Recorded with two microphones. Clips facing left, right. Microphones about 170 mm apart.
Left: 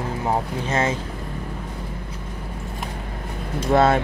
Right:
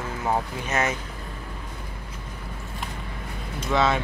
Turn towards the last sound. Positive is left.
turn(degrees=50)  # may be behind; listen again after turning